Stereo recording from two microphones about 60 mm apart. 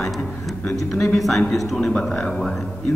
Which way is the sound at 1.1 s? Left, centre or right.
Centre.